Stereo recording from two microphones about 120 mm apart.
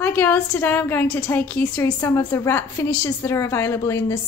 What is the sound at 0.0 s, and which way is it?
A woman's voice, 15° left (ahead or behind).